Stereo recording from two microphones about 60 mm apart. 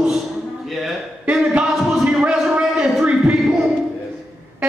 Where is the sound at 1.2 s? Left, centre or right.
Right.